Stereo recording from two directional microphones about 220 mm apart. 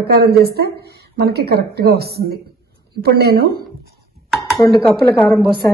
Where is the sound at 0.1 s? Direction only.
45° right (ahead or behind).